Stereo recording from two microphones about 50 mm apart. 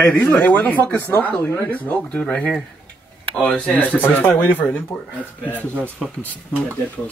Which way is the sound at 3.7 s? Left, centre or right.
Left.